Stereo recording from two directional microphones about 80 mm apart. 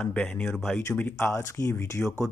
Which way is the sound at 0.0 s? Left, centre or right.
Centre.